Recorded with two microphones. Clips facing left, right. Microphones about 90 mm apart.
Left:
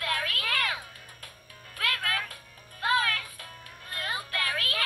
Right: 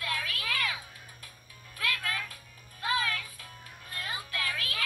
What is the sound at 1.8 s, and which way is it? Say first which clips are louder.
Music: left 3 dB; 60° left (ahead or behind).